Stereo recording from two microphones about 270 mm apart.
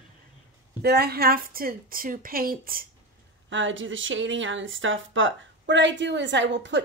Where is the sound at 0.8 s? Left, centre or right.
Right.